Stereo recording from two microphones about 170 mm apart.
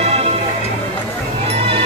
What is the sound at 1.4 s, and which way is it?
Music, 35° right (ahead or behind).